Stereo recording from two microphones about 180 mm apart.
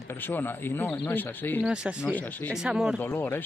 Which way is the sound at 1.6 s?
5° right (ahead or behind).